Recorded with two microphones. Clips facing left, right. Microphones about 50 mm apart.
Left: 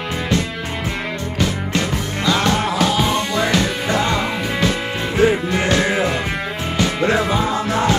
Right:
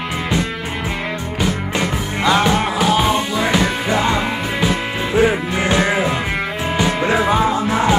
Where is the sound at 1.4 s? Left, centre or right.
Centre.